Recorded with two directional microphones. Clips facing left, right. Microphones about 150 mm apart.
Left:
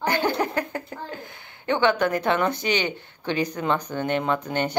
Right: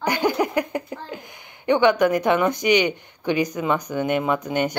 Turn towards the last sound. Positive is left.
turn(degrees=-10)  # may be behind; listen again after turning